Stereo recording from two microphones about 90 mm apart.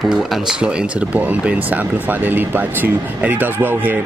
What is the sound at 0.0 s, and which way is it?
A man's voice, centre (ahead or behind).